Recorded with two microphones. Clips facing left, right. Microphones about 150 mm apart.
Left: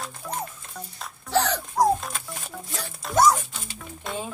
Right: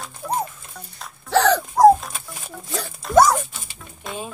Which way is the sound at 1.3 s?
90° right.